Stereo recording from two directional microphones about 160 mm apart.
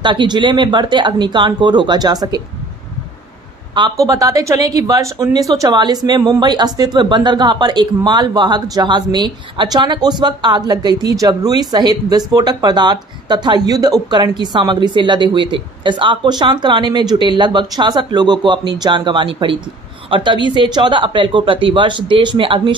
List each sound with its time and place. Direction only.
0.0 s speech: 30° right (ahead or behind)
3.7 s speech: 25° right (ahead or behind)